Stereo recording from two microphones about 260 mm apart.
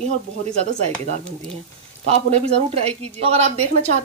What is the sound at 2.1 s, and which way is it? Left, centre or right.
Speech, right.